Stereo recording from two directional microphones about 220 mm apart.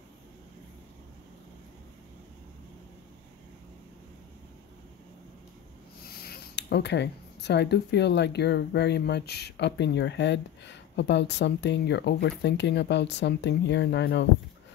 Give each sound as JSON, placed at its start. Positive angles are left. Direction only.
{"t": 6.0, "sound": "speech", "side_deg": 45}